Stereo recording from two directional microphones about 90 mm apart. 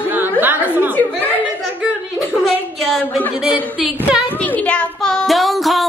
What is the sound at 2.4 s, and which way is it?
Music, centre (ahead or behind).